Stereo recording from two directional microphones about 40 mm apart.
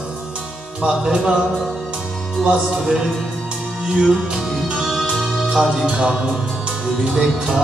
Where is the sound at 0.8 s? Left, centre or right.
Centre.